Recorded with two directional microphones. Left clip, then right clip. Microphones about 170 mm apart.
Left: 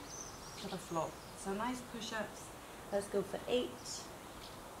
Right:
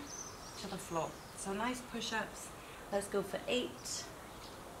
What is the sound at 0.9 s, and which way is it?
Speech, 15° right (ahead or behind).